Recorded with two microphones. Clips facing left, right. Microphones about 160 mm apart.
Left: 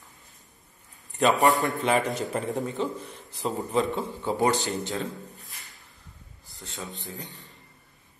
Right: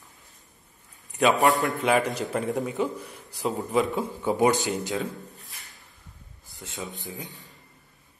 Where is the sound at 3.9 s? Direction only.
15° right (ahead or behind).